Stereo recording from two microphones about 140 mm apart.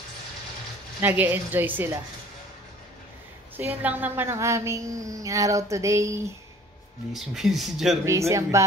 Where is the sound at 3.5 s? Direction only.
15° right (ahead or behind).